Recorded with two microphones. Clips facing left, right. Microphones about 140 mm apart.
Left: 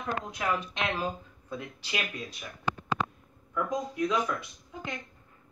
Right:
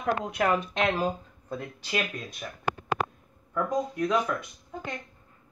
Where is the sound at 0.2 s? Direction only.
65° right (ahead or behind).